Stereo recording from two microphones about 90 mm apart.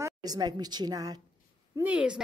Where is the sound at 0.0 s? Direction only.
45° right (ahead or behind).